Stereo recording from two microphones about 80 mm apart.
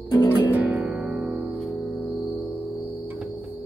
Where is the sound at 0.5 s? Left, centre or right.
Right.